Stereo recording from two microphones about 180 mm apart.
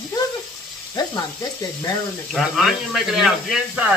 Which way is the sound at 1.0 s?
20° left (ahead or behind).